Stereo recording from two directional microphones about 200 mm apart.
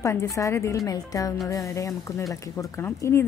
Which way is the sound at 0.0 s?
15° left (ahead or behind).